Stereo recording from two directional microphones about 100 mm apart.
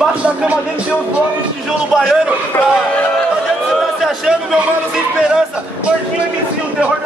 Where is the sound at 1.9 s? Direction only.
5° right (ahead or behind).